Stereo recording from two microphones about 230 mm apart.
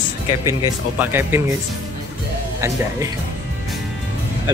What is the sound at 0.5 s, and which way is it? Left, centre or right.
Speech, centre.